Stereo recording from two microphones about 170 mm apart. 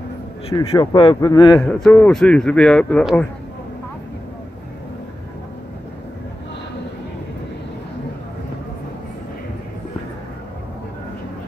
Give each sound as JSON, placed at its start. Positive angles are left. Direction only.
{"t": 0.7, "sound": "a man's voice", "side_deg": 30}
{"t": 1.6, "sound": "a man's voice", "side_deg": 5}